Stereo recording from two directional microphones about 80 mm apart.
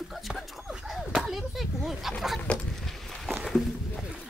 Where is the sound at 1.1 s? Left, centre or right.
Centre.